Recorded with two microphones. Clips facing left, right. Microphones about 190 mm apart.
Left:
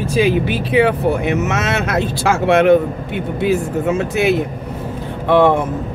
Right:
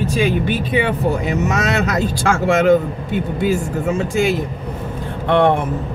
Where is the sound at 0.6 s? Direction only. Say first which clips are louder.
Left 4 dB; 90° left.